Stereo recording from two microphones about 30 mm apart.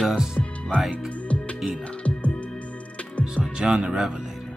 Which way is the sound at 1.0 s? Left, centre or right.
Left.